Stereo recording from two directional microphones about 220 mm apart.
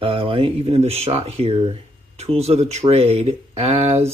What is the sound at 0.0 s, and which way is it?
Speech, 25° right (ahead or behind).